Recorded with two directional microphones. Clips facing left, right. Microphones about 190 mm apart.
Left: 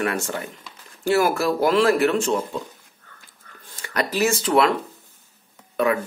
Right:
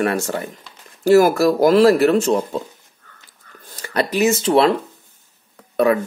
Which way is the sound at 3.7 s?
35° right (ahead or behind).